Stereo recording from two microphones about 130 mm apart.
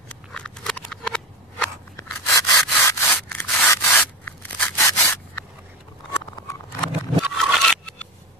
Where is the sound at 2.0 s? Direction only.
25° left (ahead or behind).